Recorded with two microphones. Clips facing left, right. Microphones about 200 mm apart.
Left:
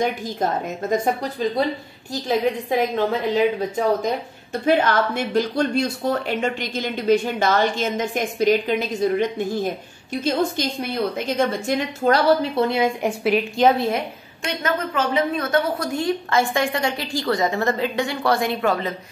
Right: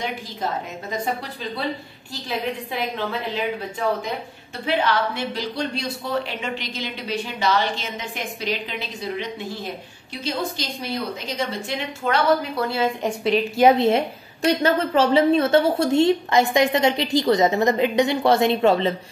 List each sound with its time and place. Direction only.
0.0 s speech: 45° left (ahead or behind)
2.2 s speech: 45° left (ahead or behind)
4.6 s speech: 45° left (ahead or behind)
12.5 s a woman's voice: 20° left (ahead or behind)
13.7 s a woman's voice: 25° right (ahead or behind)